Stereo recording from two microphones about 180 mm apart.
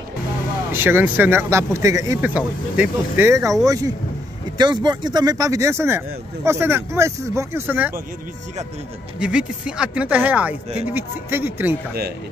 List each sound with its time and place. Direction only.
0.7 s speech: 10° right (ahead or behind)
9.2 s speech: 5° right (ahead or behind)